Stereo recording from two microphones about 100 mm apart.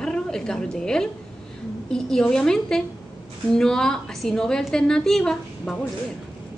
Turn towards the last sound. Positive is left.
turn(degrees=5)  # may be behind; listen again after turning